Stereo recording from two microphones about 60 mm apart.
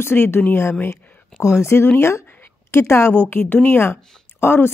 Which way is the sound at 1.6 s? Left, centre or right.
Left.